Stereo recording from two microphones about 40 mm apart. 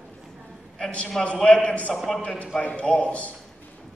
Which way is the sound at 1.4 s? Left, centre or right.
Left.